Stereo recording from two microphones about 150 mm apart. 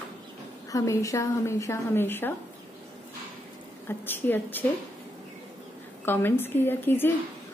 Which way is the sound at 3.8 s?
15° left (ahead or behind).